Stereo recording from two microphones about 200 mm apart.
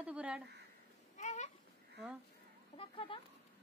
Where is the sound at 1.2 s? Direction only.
35° left (ahead or behind).